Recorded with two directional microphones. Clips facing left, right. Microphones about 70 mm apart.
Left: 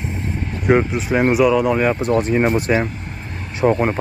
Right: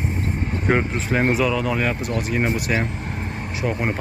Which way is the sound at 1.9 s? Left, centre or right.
Left.